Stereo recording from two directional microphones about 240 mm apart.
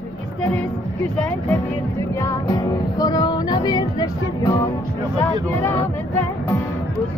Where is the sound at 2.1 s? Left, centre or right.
Centre.